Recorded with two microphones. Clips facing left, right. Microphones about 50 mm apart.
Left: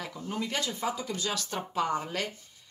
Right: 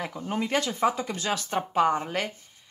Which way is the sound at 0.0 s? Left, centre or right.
Right.